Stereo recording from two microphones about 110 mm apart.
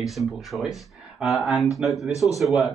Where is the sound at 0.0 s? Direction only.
Centre (ahead or behind).